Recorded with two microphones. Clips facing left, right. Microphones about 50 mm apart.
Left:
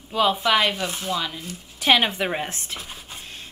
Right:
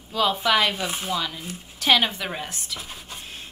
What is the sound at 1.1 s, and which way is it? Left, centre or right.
Speech, centre.